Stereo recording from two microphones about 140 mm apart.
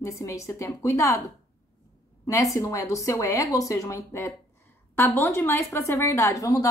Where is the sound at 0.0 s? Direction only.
20° left (ahead or behind).